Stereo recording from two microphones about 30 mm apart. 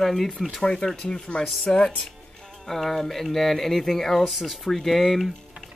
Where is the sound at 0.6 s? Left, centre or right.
Left.